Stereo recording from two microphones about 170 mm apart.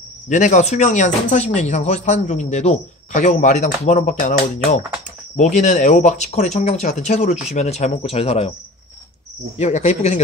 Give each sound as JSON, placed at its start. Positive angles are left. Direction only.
{"t": 0.3, "sound": "speech", "side_deg": 45}
{"t": 9.6, "sound": "speech", "side_deg": 40}